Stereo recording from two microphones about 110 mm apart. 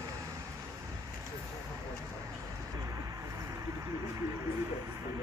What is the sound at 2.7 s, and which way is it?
Vehicle, 30° right (ahead or behind).